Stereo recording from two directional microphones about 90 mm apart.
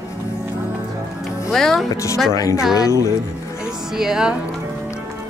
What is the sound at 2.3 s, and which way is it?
Speech, 35° left (ahead or behind).